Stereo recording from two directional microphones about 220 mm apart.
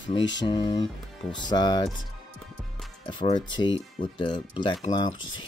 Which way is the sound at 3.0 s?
25° left (ahead or behind).